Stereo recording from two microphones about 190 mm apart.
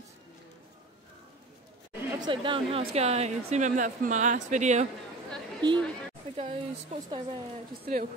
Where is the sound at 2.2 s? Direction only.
25° right (ahead or behind).